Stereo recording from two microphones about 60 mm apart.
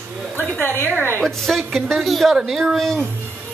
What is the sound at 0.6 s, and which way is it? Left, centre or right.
Speech, left.